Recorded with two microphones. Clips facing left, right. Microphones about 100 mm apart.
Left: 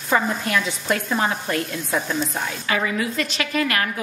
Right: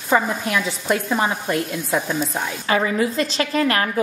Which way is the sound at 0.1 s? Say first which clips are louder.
Right 1 dB; 10° right (ahead or behind).